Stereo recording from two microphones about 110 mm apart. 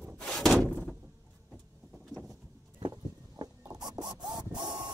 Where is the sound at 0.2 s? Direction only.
5° left (ahead or behind).